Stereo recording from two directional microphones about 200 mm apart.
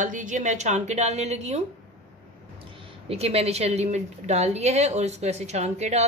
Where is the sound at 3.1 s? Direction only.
30° right (ahead or behind).